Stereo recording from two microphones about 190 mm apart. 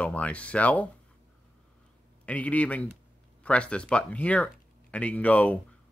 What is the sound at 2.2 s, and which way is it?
Speech, 5° left (ahead or behind).